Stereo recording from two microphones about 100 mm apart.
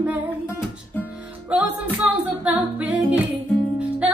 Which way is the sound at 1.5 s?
10° right (ahead or behind).